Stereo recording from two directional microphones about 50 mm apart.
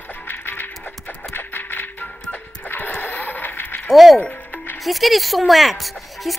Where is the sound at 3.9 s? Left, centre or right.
Centre.